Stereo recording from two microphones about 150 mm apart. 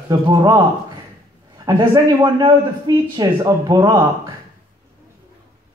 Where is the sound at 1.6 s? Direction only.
25° right (ahead or behind).